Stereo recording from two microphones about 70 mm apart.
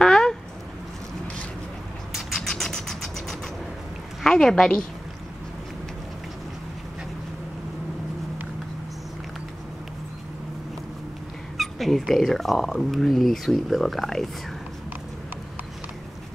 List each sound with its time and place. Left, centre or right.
0.0 s a sound: centre
2.1 s vehicle: centre
4.2 s a woman's voice: centre
11.5 s speech: centre